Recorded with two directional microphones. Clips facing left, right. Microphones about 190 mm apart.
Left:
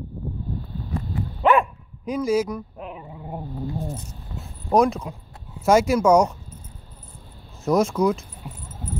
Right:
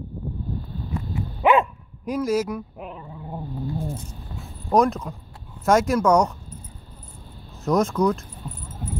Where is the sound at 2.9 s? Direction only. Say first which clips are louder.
Left 1 dB; 15° left (ahead or behind).